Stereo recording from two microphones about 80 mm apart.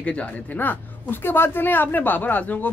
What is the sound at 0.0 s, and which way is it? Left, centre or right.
Speech, centre.